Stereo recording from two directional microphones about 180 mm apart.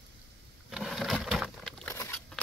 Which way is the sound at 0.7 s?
Centre (ahead or behind).